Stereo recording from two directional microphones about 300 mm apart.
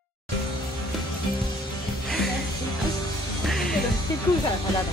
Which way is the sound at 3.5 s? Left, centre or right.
Centre.